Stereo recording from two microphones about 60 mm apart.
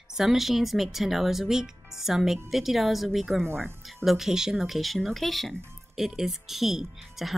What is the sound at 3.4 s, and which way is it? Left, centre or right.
Speech, right.